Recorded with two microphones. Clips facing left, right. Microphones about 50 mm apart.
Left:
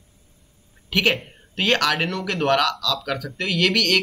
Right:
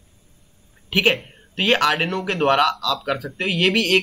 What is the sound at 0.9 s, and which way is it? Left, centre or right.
Speech, centre.